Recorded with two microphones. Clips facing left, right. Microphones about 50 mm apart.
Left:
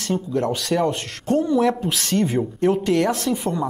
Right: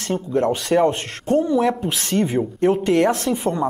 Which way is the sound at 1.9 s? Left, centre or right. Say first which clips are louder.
Even; centre.